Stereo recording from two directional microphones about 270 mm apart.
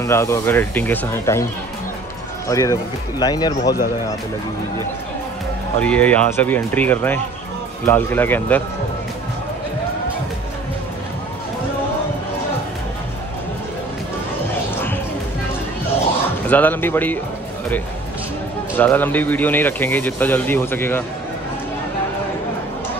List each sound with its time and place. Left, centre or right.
0.0 s speech: centre
2.4 s speech: centre
5.8 s speech: centre
16.4 s speech: centre
18.8 s speech: centre